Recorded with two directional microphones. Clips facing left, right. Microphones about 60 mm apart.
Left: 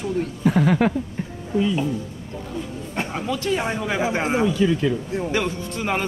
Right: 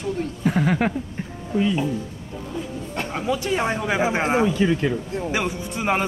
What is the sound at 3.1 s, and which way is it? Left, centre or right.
Speech, centre.